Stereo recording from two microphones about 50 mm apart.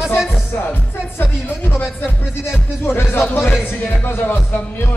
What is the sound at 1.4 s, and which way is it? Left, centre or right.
Speech, left.